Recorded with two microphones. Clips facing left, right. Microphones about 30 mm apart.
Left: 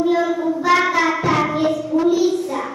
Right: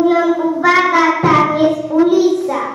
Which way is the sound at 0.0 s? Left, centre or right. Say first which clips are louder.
Right 5 dB; right.